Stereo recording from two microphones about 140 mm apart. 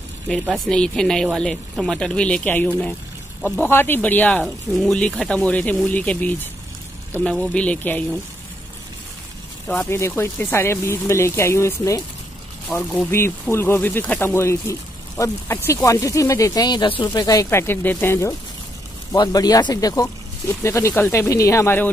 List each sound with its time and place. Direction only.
0.7 s speech: 5° left (ahead or behind)
9.8 s speech: 20° left (ahead or behind)
12.7 s speech: centre (ahead or behind)
13.1 s speech: 15° left (ahead or behind)